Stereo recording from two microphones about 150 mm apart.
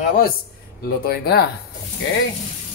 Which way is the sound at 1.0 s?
90° left.